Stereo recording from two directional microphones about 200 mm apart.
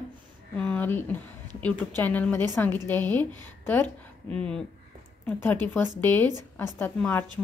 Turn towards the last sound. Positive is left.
turn(degrees=10)  # may be behind; listen again after turning